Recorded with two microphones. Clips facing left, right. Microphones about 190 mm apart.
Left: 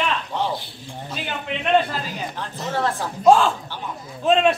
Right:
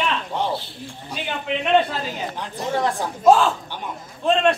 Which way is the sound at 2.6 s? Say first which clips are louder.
Right 2 dB; 15° right (ahead or behind).